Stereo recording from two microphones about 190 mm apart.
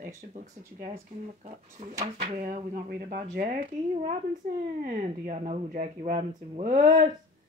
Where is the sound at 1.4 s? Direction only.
40° right (ahead or behind).